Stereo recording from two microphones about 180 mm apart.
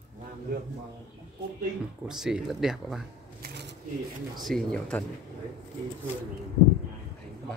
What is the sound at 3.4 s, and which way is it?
Shuffling cards, 70° right (ahead or behind).